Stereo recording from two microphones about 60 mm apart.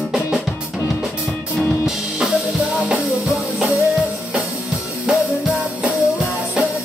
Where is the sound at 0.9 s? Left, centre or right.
Centre.